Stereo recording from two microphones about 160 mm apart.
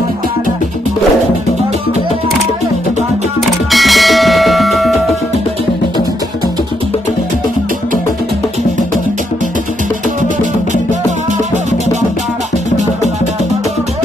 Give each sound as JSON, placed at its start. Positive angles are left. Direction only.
{"t": 3.7, "sound": "music", "side_deg": 0}
{"t": 10.2, "sound": "music", "side_deg": -50}